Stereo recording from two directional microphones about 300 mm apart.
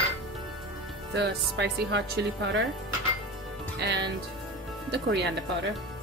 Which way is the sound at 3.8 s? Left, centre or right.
Right.